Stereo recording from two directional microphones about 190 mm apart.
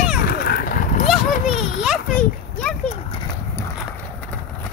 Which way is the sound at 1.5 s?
Centre (ahead or behind).